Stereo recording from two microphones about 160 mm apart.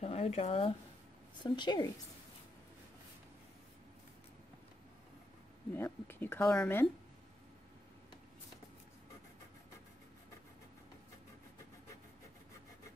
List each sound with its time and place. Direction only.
0.0 s a woman's voice: 40° left (ahead or behind)
5.8 s a woman's voice: 15° left (ahead or behind)